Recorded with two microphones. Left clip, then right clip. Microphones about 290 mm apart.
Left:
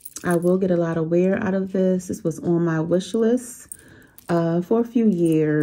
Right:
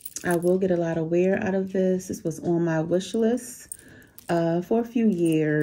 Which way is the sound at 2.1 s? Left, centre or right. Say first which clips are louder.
Left 3 dB; left.